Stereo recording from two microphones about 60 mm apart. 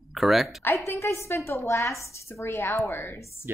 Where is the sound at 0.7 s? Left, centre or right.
Left.